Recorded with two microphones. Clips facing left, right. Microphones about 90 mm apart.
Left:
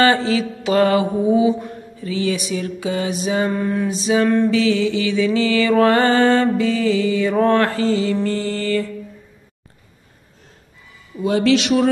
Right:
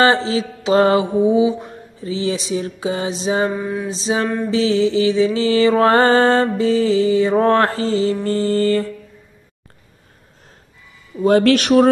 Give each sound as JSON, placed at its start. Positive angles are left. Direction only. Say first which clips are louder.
{"t": 0.0, "sound": "mantra", "louder": "right 1 dB", "side_deg": -30}
{"t": 3.5, "sound": "mantra", "louder": "left 2 dB", "side_deg": -5}
{"t": 3.9, "sound": "mantra", "louder": "left 4 dB", "side_deg": -30}
{"t": 11.2, "sound": "speech", "louder": "right 3 dB", "side_deg": -50}